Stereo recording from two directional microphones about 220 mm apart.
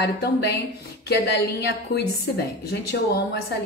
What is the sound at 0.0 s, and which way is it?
A woman's voice, 50° left (ahead or behind).